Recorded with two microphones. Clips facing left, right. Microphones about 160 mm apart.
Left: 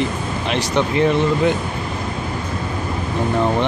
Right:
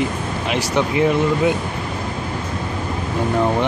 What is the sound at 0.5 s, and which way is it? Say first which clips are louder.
Speech: even; 10° right (ahead or behind).